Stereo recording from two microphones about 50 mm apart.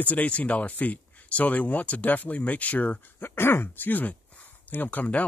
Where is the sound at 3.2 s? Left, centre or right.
Left.